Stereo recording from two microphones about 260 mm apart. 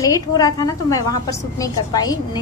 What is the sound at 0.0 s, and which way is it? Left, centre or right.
Speech, centre.